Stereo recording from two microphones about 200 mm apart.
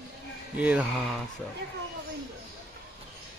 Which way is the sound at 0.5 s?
5° right (ahead or behind).